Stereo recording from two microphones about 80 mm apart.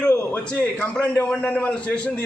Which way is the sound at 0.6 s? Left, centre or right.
Centre.